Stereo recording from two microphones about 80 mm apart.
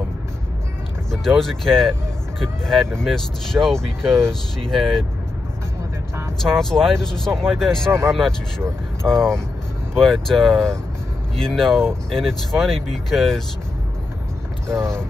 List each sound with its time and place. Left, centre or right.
1.1 s speech: centre
6.4 s speech: centre
14.7 s speech: right